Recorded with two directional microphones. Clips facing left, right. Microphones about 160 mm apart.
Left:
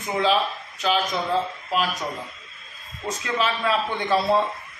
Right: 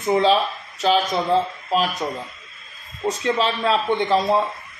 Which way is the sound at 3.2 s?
35° right (ahead or behind).